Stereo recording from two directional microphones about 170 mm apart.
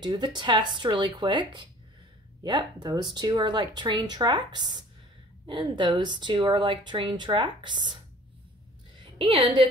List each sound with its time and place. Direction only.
0.0 s speech: 25° right (ahead or behind)
9.2 s a woman's voice: 30° right (ahead or behind)